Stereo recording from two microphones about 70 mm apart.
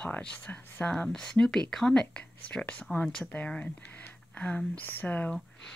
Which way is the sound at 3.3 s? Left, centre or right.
Centre.